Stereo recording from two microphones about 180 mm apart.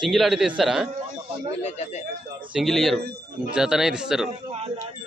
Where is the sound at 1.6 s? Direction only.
40° left (ahead or behind).